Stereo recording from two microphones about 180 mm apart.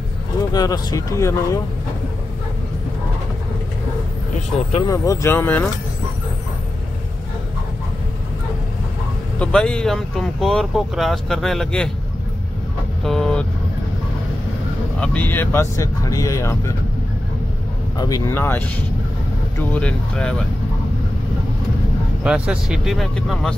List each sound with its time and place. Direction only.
0.5 s speech: 20° left (ahead or behind)
4.8 s speech: 20° left (ahead or behind)
9.4 s speech: 5° left (ahead or behind)
13.0 s vehicle: 5° left (ahead or behind)
15.0 s speech: 10° left (ahead or behind)
17.9 s speech: 20° left (ahead or behind); by 20.4 s 5° left (ahead or behind)
22.2 s speech: 5° right (ahead or behind)